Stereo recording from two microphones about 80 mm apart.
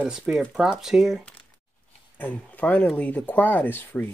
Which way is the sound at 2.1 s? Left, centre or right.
Left.